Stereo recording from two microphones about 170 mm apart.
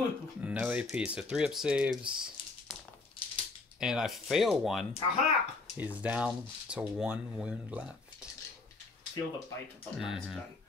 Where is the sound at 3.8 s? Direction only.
5° right (ahead or behind).